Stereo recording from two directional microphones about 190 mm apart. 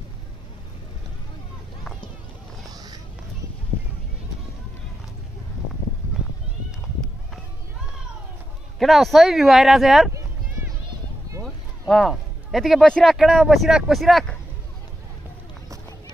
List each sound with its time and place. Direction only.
2.7 s a sound: 20° right (ahead or behind)
8.7 s speech: centre (ahead or behind)
11.4 s speech: centre (ahead or behind)